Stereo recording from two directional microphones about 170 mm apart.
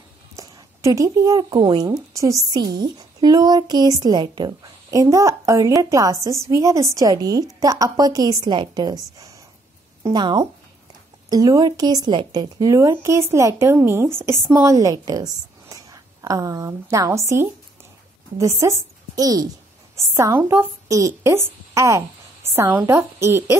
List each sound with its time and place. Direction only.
0.4 s a woman's voice: 20° right (ahead or behind)